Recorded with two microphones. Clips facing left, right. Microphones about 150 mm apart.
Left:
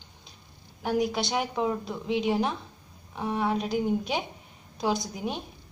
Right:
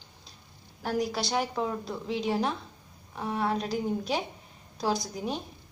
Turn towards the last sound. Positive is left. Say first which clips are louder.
# left 1 dB
turn(degrees=0)  # may be behind; listen again after turning